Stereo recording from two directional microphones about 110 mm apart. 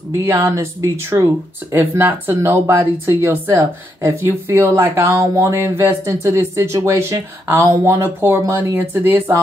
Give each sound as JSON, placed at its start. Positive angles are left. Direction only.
{"t": 0.2, "sound": "speech", "side_deg": -25}